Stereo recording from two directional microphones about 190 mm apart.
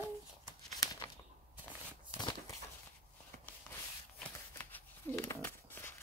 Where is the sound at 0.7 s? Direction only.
20° left (ahead or behind).